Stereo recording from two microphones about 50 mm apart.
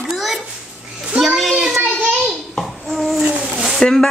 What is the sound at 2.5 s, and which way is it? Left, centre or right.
Babbling, centre.